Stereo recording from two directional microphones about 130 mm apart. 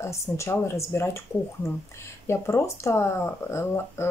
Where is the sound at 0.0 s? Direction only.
20° left (ahead or behind).